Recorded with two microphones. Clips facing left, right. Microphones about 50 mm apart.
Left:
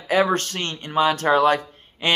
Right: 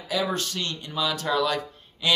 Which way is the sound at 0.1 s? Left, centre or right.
Left.